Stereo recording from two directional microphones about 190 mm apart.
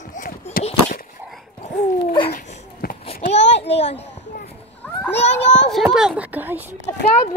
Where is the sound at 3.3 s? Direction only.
65° left (ahead or behind).